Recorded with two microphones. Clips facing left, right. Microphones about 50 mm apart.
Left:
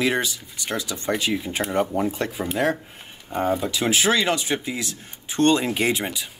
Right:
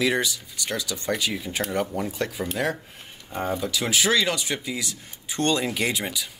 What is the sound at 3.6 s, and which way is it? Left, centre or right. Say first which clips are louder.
Speech: left 3 dB; left.